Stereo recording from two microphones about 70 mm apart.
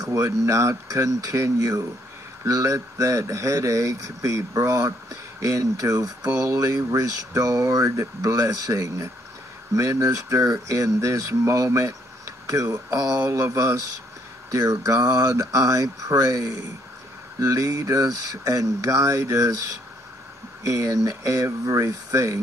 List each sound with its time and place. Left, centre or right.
0.0 s speech: right